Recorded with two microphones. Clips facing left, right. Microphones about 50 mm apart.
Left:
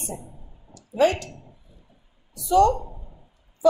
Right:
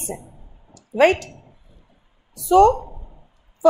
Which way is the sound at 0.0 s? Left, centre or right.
Right.